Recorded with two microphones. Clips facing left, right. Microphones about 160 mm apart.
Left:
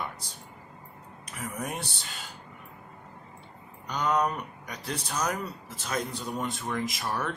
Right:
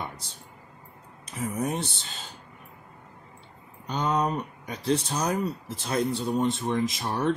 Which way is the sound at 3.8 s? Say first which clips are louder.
Right 1 dB; 25° right (ahead or behind).